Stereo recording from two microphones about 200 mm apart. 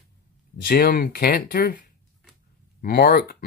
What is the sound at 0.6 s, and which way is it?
Speech, 50° left (ahead or behind).